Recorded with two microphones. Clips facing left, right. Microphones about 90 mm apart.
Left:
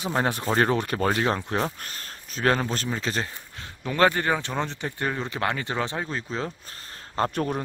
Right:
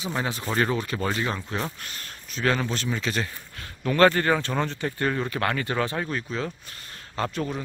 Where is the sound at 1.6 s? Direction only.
40° left (ahead or behind); by 6.2 s 20° left (ahead or behind).